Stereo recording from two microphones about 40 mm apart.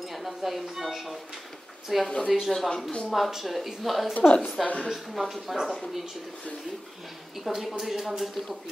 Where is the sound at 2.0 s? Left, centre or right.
Left.